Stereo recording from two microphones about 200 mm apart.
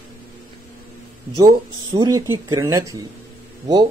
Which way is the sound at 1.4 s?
20° right (ahead or behind).